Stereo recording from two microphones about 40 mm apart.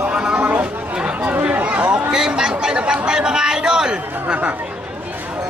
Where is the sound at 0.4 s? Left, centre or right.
Right.